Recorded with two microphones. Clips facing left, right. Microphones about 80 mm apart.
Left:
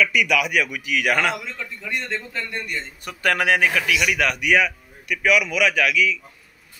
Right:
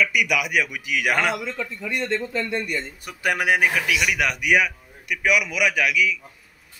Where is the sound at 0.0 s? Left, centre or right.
Centre.